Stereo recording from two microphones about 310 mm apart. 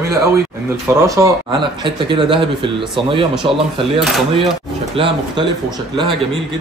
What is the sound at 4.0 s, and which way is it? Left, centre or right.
Speech, centre.